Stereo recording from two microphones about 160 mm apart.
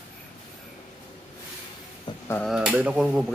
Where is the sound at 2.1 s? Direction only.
30° left (ahead or behind).